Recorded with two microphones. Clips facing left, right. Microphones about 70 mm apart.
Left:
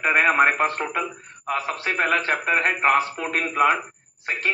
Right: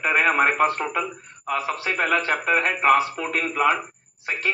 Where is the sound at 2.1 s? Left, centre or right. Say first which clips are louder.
Even; left.